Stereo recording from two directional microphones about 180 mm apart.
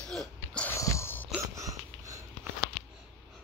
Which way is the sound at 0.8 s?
15° left (ahead or behind).